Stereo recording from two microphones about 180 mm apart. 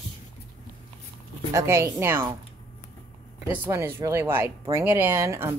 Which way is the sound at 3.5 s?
15° right (ahead or behind).